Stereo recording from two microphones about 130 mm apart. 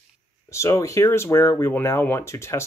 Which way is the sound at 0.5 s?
20° left (ahead or behind).